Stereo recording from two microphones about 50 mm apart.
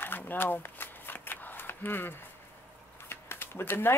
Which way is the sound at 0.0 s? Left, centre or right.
Left.